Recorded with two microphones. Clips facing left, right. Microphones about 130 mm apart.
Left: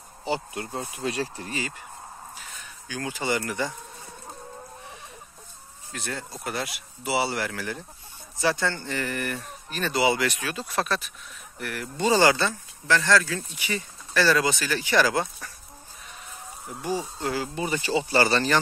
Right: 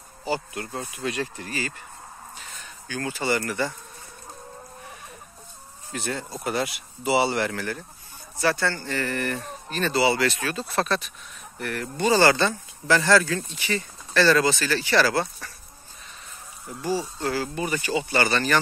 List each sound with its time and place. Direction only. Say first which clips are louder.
0.2 s speech: right 1 dB; 25° left (ahead or behind)
2.9 s speech: right 2 dB; 15° left (ahead or behind)
5.9 s speech: right 4 dB; centre (ahead or behind)
8.4 s speech: right 1 dB; 15° left (ahead or behind)
12.0 s speech: right 1 dB; 15° left (ahead or behind)
12.8 s speech: right 3 dB; 5° right (ahead or behind); by 15.5 s 15° left (ahead or behind)
16.8 s speech: right 2 dB; 20° left (ahead or behind)